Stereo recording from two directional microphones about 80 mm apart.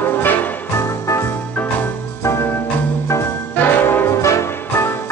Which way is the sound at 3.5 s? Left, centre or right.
Left.